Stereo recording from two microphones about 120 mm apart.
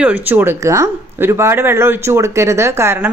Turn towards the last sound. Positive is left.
turn(degrees=-20)  # may be behind; listen again after turning